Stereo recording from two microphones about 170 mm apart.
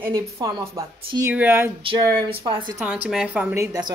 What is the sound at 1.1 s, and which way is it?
Speech, 15° right (ahead or behind).